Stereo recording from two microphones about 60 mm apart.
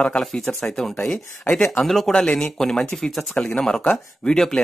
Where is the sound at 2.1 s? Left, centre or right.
Centre.